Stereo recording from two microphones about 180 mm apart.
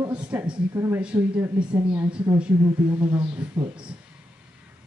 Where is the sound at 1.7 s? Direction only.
25° right (ahead or behind).